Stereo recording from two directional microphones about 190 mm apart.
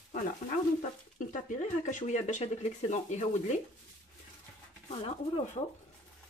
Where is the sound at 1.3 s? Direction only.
40° left (ahead or behind).